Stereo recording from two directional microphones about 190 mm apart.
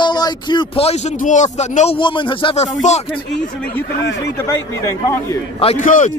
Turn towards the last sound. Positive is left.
turn(degrees=40)  # may be behind; listen again after turning